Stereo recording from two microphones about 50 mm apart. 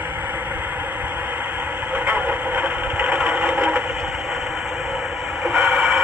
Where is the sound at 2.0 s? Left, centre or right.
Right.